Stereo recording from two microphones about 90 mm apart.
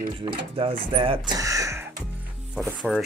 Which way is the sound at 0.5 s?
90° right.